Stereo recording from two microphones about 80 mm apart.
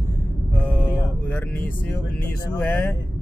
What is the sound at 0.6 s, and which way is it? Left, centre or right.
Mantra, centre.